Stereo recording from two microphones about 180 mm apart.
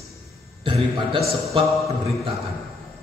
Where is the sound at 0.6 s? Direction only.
30° right (ahead or behind).